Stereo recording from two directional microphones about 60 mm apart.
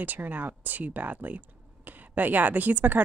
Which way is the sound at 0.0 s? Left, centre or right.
Right.